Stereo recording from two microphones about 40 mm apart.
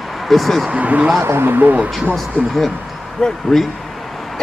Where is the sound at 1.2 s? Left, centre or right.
Right.